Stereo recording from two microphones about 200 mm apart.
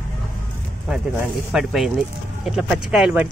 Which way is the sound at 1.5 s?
Centre (ahead or behind).